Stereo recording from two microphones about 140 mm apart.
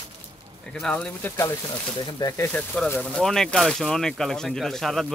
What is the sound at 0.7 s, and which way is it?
Speech, 5° left (ahead or behind).